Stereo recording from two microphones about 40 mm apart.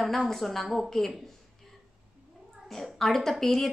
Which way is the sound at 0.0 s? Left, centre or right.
Centre.